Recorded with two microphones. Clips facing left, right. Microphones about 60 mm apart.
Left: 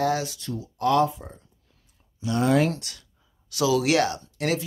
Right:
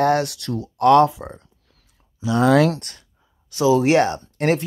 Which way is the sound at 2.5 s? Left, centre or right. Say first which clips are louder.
Right 5 dB; right.